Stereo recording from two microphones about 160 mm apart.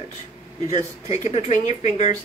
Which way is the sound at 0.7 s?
45° left (ahead or behind).